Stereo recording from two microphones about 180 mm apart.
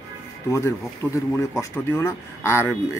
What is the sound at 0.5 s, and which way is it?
A man's voice, 15° left (ahead or behind).